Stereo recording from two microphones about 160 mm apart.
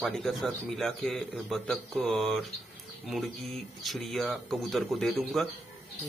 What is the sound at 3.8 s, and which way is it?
Speech, centre (ahead or behind).